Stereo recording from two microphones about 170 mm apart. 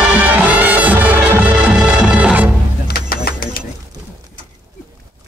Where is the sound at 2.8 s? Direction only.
60° left (ahead or behind).